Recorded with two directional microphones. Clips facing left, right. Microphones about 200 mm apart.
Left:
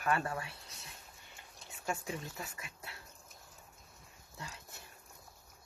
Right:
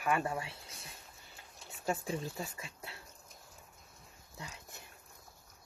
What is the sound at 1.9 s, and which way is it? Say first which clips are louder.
Speech: right 4 dB; 35° right (ahead or behind).